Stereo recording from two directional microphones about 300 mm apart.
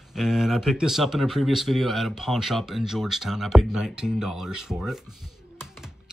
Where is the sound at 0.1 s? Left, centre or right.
Centre.